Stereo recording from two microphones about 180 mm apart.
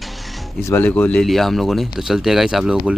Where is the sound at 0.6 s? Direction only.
10° left (ahead or behind).